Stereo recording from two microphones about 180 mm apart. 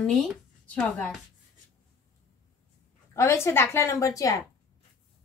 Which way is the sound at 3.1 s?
15° left (ahead or behind).